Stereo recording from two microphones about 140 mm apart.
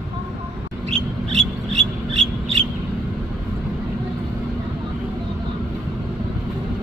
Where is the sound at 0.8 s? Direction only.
45° right (ahead or behind).